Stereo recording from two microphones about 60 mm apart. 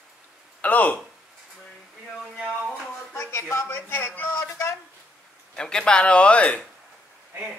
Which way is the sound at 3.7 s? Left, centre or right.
Left.